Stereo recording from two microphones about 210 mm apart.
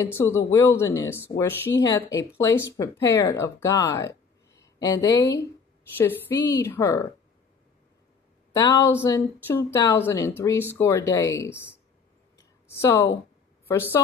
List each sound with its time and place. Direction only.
0.0 s speech: 10° left (ahead or behind)
6.3 s a woman's voice: 20° left (ahead or behind)
8.5 s speech: 15° left (ahead or behind)
12.6 s a woman's voice: 10° left (ahead or behind)